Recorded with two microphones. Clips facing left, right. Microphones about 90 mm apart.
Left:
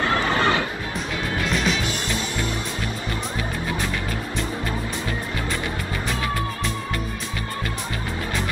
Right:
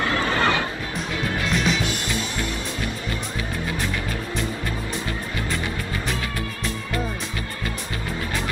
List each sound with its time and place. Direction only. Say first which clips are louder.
0.1 s music: left 1 dB; 25° left (ahead or behind)